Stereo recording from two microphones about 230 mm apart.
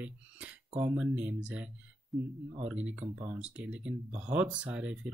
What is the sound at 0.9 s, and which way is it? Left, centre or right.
Speech, centre.